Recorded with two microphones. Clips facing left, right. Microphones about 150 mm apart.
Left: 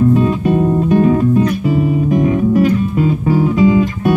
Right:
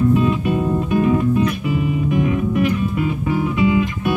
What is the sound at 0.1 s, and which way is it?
Music, 40° left (ahead or behind).